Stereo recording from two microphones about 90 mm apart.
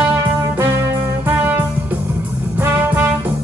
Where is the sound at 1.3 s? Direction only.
25° right (ahead or behind).